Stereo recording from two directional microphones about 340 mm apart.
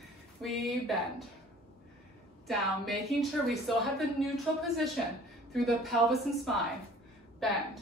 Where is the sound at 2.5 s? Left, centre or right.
Centre.